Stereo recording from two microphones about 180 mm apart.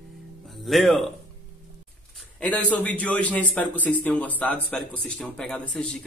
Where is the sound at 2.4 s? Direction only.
10° left (ahead or behind).